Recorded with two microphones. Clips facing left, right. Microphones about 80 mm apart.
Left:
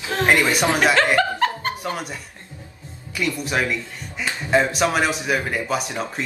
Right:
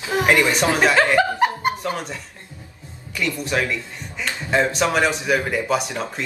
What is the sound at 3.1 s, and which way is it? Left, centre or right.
A man's voice, centre.